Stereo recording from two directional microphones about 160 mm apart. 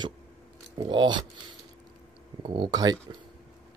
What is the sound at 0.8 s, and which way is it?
Speech, 30° right (ahead or behind).